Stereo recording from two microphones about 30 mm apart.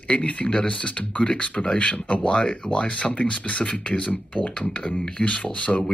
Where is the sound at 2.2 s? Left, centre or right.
Left.